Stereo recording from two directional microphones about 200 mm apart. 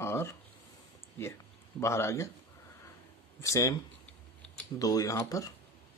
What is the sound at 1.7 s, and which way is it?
Speech, 15° left (ahead or behind).